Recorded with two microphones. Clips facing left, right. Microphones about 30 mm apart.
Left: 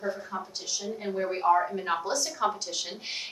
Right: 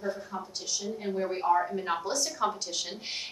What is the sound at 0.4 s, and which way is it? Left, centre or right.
A woman's voice, centre.